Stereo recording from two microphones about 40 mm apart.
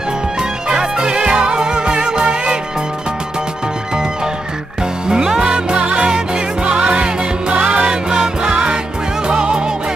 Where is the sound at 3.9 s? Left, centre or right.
Centre.